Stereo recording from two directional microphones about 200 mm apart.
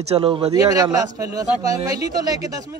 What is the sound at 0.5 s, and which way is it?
A man's voice, 15° right (ahead or behind).